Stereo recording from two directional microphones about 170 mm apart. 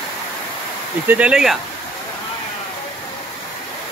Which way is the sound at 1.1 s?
5° right (ahead or behind).